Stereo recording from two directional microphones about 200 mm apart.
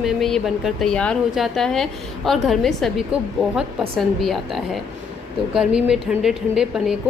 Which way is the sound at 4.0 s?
Centre (ahead or behind).